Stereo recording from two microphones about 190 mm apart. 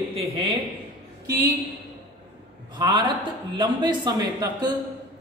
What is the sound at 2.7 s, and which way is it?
Speech, 25° right (ahead or behind).